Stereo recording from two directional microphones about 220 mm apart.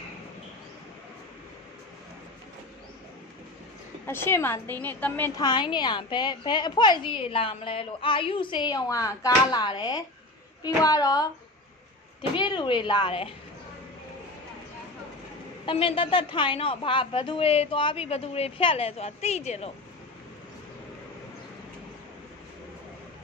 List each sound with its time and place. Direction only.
4.0 s a woman's voice: 10° left (ahead or behind)
15.6 s a woman's voice: 25° left (ahead or behind)